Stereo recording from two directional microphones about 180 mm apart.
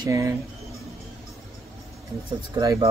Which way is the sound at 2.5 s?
20° right (ahead or behind).